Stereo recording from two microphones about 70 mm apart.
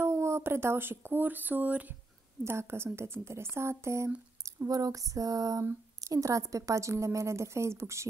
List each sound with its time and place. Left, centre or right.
0.0 s speech: right
2.4 s a woman's voice: right
4.6 s female singing: right
6.0 s a woman's voice: right